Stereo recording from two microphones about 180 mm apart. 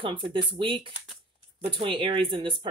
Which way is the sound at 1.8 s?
30° right (ahead or behind).